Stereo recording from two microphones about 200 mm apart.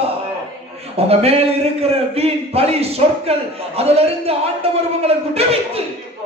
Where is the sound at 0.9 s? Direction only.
30° right (ahead or behind).